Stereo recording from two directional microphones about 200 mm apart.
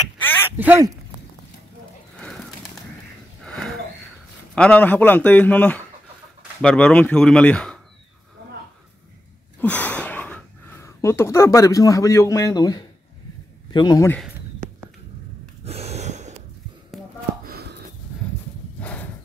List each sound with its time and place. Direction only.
0.6 s speech: 10° right (ahead or behind)
2.1 s bird: 5° left (ahead or behind)
3.4 s a sound: 5° left (ahead or behind)
4.6 s a man's voice: 5° left (ahead or behind)
9.6 s speech: 5° left (ahead or behind)
15.6 s gasp: 30° right (ahead or behind)
17.5 s a sound: 55° right (ahead or behind)
18.8 s horse: 5° left (ahead or behind)